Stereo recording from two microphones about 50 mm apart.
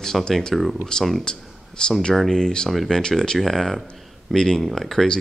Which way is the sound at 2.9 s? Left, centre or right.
Centre.